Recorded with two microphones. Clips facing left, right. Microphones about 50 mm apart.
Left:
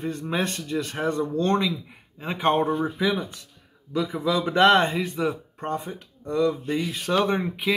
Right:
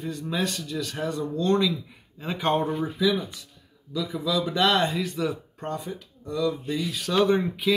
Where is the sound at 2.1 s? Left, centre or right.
Left.